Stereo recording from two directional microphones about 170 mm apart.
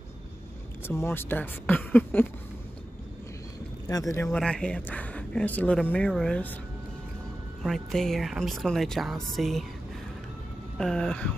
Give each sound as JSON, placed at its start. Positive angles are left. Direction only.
{"t": 0.8, "sound": "speech", "side_deg": 15}
{"t": 3.8, "sound": "speech", "side_deg": 20}
{"t": 4.4, "sound": "speech", "side_deg": 5}
{"t": 7.6, "sound": "speech", "side_deg": 0}
{"t": 10.8, "sound": "speech", "side_deg": 5}